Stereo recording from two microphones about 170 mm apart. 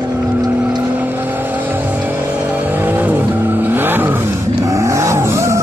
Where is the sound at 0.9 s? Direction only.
10° right (ahead or behind).